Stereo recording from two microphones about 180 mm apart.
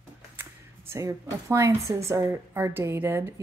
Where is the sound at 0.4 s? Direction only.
15° right (ahead or behind).